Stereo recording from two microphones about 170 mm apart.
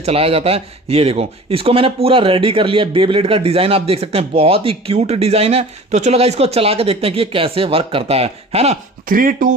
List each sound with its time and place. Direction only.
0.0 s speech: 35° right (ahead or behind)
9.1 s speech: 55° right (ahead or behind)